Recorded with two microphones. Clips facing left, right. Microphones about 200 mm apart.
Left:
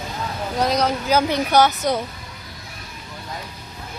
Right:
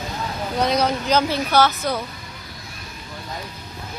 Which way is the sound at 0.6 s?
Centre (ahead or behind).